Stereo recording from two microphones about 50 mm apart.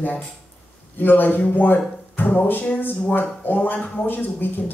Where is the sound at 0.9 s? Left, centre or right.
Left.